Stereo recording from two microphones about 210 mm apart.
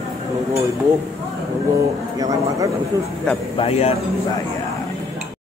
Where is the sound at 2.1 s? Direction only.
15° right (ahead or behind).